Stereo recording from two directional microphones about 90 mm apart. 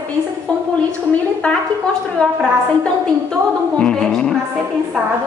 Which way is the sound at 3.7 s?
10° left (ahead or behind).